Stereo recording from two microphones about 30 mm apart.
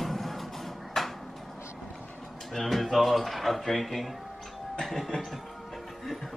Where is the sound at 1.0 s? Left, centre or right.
Centre.